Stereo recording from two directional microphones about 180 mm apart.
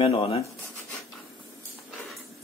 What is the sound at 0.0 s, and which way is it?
Speech, 30° left (ahead or behind).